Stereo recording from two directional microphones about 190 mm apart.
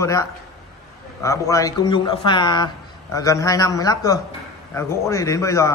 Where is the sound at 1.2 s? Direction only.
15° left (ahead or behind).